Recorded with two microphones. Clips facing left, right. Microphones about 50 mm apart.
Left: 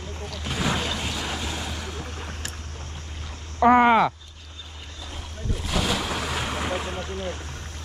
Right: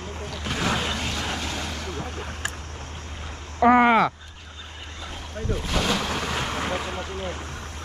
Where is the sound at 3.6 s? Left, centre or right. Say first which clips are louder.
Even; right.